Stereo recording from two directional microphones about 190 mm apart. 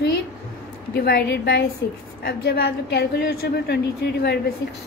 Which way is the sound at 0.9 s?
55° left (ahead or behind).